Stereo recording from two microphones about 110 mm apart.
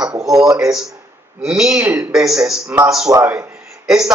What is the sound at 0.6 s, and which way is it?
A man's voice, 5° right (ahead or behind).